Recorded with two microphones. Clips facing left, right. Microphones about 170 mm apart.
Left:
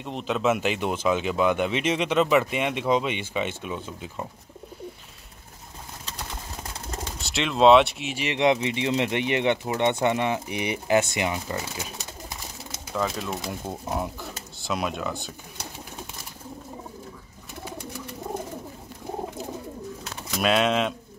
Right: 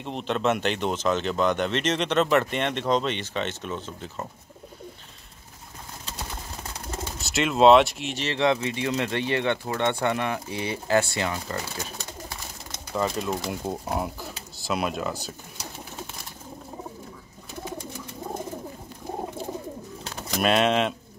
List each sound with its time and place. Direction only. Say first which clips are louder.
0.0 s speech: left 1 dB; centre (ahead or behind)
7.1 s speech: right 3 dB; centre (ahead or behind)
20.3 s speech: right 1 dB; centre (ahead or behind)